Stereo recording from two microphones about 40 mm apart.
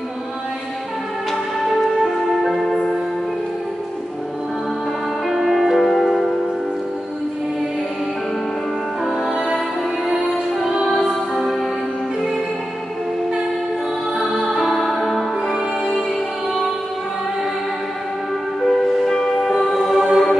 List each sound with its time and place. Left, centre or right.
1.3 s music: centre
5.3 s music: centre
9.0 s music: centre
9.3 s music: centre
10.3 s music: centre
14.3 s music: centre
18.7 s music: centre